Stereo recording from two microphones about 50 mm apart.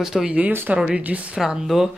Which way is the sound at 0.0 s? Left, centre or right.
Centre.